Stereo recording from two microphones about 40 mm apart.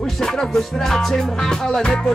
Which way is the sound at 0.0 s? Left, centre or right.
Centre.